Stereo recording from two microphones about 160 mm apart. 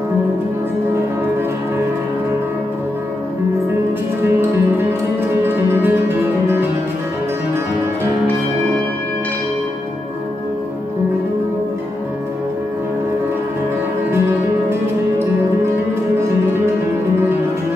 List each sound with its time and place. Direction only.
4.2 s music: 15° right (ahead or behind)
5.7 s music: 15° right (ahead or behind)
14.7 s music: 15° right (ahead or behind)